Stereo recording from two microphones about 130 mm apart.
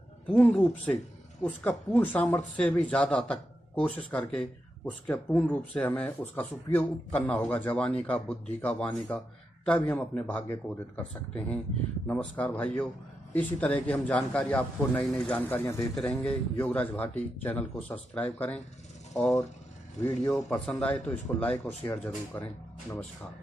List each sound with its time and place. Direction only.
0.3 s speech: 10° left (ahead or behind)
16.0 s speech: 10° left (ahead or behind)
20.0 s a man's voice: 20° left (ahead or behind)
20.4 s speech: 10° left (ahead or behind)